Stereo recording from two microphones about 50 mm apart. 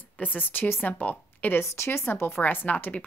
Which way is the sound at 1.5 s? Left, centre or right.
Left.